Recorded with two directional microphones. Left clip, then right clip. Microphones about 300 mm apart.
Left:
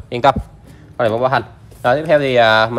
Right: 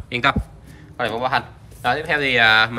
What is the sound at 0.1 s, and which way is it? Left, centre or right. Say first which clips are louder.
Speech: left 6 dB; centre.